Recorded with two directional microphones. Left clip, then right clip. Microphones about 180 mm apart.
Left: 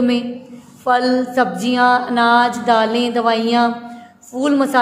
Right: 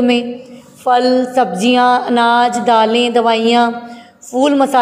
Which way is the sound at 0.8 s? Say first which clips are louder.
Right 4 dB; 20° right (ahead or behind).